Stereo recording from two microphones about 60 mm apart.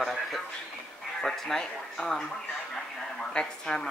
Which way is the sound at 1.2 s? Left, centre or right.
Centre.